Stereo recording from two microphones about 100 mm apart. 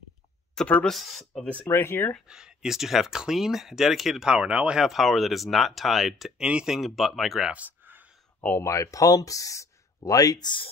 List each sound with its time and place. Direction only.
0.8 s speech: centre (ahead or behind)
1.7 s speech: 25° left (ahead or behind)
2.2 s speech: 5° right (ahead or behind)
7.5 s a sound: 20° right (ahead or behind)
8.4 s speech: 20° left (ahead or behind)
8.6 s speech: 30° left (ahead or behind); by 10.7 s 50° left (ahead or behind)